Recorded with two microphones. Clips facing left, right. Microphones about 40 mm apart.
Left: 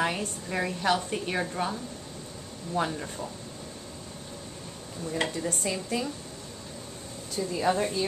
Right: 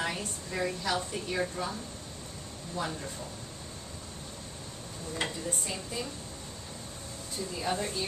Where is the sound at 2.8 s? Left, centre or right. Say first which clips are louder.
Left 6 dB; left.